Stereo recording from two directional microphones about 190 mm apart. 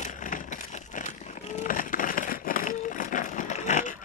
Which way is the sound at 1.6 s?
45° left (ahead or behind).